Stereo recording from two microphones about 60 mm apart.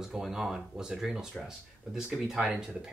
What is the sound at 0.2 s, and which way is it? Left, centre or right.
Speech, centre.